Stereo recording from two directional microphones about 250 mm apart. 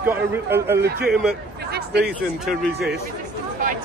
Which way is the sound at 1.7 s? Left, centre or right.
Right.